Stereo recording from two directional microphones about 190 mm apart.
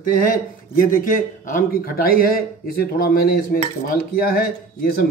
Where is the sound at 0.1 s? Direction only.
45° left (ahead or behind).